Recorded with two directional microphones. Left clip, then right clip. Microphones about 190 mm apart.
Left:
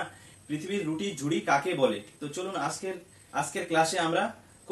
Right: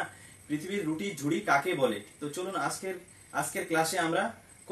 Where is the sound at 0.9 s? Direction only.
Centre (ahead or behind).